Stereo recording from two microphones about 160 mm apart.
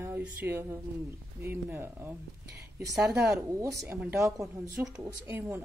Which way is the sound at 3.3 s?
20° right (ahead or behind).